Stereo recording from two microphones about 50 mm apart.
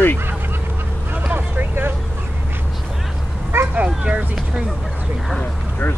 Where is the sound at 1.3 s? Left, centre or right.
Right.